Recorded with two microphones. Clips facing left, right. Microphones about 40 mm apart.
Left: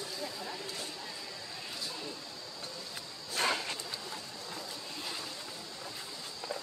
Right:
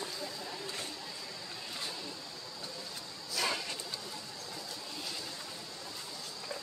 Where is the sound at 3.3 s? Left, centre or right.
Left.